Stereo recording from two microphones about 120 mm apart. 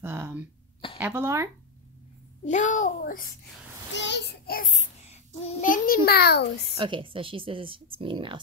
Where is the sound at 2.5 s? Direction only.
85° left.